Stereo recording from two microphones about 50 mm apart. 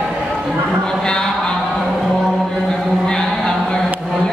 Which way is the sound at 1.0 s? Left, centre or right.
Centre.